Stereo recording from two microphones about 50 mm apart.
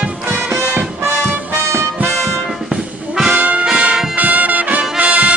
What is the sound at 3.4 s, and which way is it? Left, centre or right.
Music, right.